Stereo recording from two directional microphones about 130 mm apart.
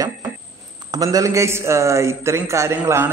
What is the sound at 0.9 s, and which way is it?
A man's voice, 25° right (ahead or behind).